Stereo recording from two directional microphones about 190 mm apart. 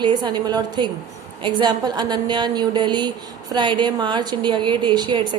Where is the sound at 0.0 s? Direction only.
25° right (ahead or behind).